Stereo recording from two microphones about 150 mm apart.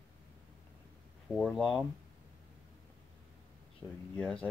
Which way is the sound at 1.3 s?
Centre (ahead or behind).